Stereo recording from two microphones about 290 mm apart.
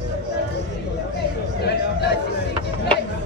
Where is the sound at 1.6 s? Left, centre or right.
Left.